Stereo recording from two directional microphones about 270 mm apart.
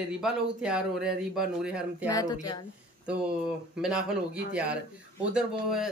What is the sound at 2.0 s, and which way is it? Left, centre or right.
Speech, centre.